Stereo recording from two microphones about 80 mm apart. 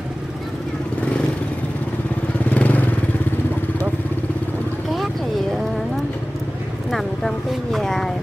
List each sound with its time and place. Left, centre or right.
2.5 s vehicle: centre
6.9 s vehicle: centre